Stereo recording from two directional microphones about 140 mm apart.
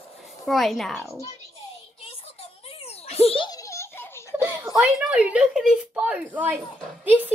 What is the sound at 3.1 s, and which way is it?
Baby laughter, 45° left (ahead or behind).